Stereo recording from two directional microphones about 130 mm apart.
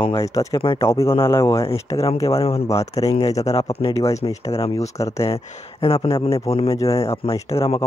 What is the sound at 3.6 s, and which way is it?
Speech, 50° left (ahead or behind).